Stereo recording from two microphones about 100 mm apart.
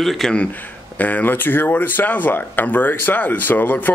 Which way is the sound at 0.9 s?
15° left (ahead or behind).